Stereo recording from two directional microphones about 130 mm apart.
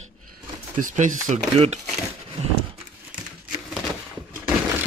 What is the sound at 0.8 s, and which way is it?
Speech, 75° right (ahead or behind).